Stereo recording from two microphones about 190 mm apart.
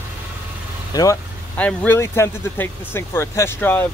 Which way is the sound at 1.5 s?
10° left (ahead or behind).